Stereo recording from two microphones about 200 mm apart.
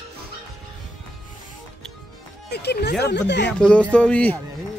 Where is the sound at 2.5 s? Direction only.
55° left (ahead or behind).